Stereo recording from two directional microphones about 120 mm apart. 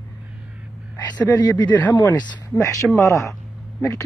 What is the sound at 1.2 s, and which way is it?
Speech, 35° left (ahead or behind).